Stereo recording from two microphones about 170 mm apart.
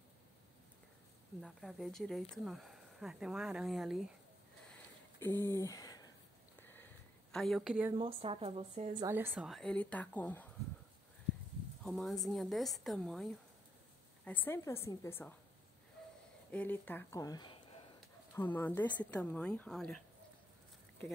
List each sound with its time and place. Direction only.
1.4 s speech: centre (ahead or behind)
4.6 s a sound: 10° left (ahead or behind)
6.6 s sniff: 10° left (ahead or behind)
7.3 s speech: centre (ahead or behind)
7.9 s speech: 30° right (ahead or behind)
9.3 s a woman's voice: centre (ahead or behind)
11.8 s a woman's voice: centre (ahead or behind)
16.5 s speech: 10° left (ahead or behind); by 17.8 s 30° left (ahead or behind)
18.3 s a woman's voice: 10° left (ahead or behind)